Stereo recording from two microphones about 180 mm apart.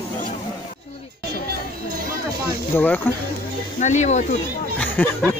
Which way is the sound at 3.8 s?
40° left (ahead or behind).